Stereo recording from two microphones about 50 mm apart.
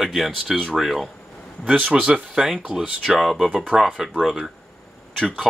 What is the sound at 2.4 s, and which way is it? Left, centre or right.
Speech, centre.